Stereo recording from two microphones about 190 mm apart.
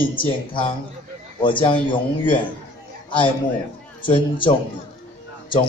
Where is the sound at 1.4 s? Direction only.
25° left (ahead or behind).